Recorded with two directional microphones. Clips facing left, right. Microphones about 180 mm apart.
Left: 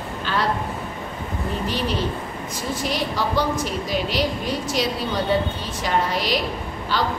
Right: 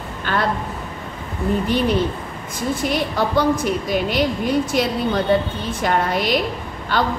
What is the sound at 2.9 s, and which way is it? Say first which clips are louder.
Speech: right 2 dB; 55° right (ahead or behind).